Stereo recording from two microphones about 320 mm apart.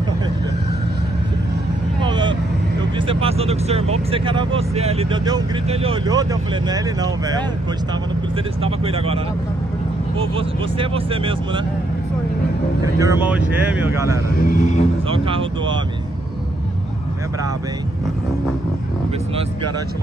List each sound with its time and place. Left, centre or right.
2.0 s vehicle: centre
3.0 s speech: centre
8.6 s speech: centre
13.0 s speech: centre
14.4 s a man's voice: left
15.0 s speech: centre